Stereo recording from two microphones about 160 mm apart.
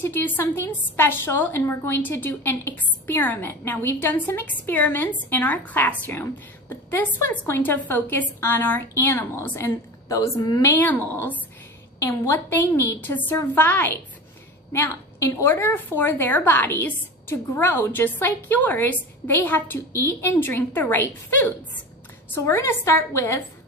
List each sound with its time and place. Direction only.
0.0 s a woman's voice: 15° left (ahead or behind)